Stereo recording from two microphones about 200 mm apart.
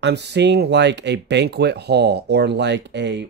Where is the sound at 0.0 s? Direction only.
60° right (ahead or behind).